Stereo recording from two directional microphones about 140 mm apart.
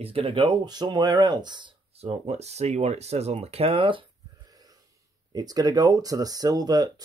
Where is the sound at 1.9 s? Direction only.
50° right (ahead or behind).